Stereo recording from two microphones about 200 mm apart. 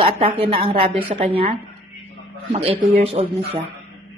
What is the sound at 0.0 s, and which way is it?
A woman's voice, 30° right (ahead or behind).